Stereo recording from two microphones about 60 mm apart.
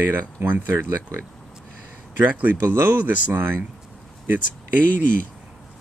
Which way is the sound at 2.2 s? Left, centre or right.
Right.